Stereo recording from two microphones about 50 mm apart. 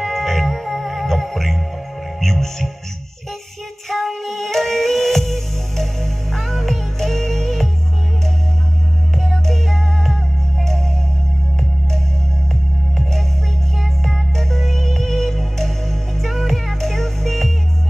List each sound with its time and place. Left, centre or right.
0.0 s music: centre
3.9 s music: centre
9.1 s music: centre
12.9 s music: centre